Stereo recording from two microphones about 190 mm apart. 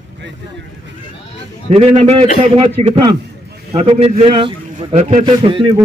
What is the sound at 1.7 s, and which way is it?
A man's voice, 30° right (ahead or behind).